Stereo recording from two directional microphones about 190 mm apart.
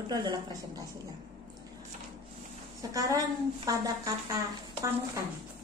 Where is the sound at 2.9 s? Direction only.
20° right (ahead or behind).